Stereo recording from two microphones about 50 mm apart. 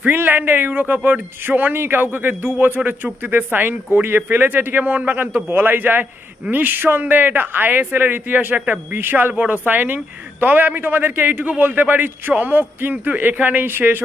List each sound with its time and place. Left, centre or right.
0.0 s a man's voice: right
9.3 s speech: right
9.7 s a man's voice: right